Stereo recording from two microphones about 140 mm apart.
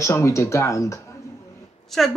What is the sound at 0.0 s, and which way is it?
Speech, 20° left (ahead or behind).